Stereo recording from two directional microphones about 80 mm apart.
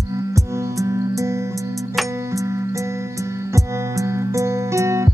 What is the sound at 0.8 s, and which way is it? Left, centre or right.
Music, right.